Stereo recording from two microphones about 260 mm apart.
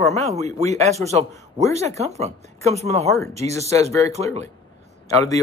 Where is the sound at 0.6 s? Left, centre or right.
Right.